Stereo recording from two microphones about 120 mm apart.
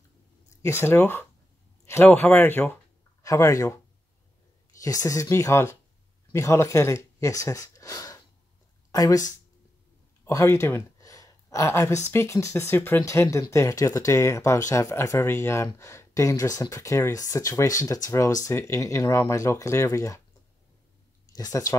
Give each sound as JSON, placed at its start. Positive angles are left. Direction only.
{"t": 0.6, "sound": "speech", "side_deg": 20}
{"t": 4.8, "sound": "speech", "side_deg": 25}
{"t": 10.2, "sound": "a sound", "side_deg": 25}
{"t": 12.1, "sound": "speech", "side_deg": 20}
{"t": 21.3, "sound": "speech", "side_deg": 30}